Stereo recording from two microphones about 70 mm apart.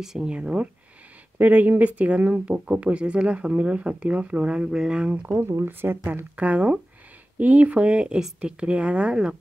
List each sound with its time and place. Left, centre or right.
0.0 s speech: centre
5.4 s speech: right
6.3 s speech: centre